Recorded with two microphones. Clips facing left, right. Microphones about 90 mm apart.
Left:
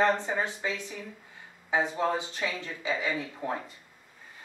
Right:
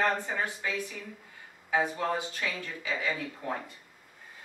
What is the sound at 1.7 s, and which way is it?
Speech, 20° left (ahead or behind).